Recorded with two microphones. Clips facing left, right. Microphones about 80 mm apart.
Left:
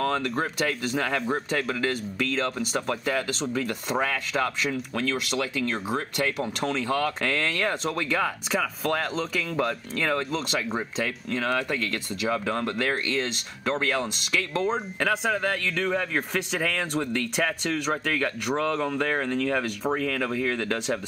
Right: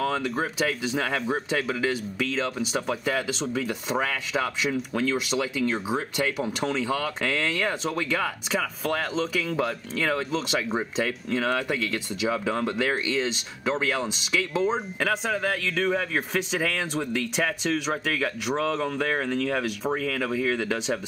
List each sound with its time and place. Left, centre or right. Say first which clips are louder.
0.0 s speech: even; centre